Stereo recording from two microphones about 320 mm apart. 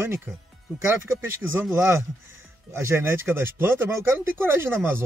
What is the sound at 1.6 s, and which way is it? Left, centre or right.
Speech, centre.